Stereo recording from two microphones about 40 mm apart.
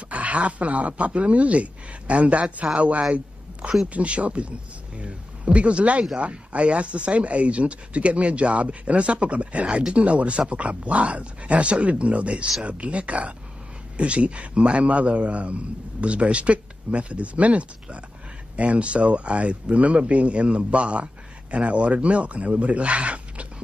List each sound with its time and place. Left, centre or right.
0.1 s speech: right